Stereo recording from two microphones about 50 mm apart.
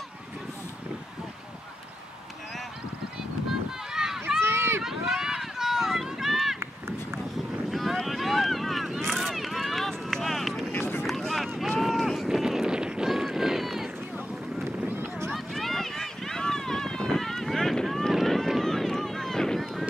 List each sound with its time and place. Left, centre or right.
3.9 s a sound: centre
4.4 s run: right
4.8 s run: centre
7.7 s boat: centre
10.7 s run: left
11.1 s vehicle: centre
11.8 s run: centre
14.9 s a sound: right
15.3 s run: centre
18.6 s a sound: centre